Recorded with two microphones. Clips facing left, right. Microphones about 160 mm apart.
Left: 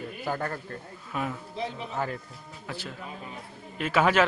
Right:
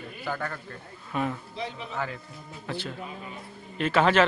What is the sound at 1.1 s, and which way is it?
Speech, 5° left (ahead or behind).